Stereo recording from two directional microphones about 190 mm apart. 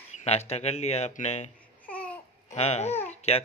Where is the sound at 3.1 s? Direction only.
35° left (ahead or behind).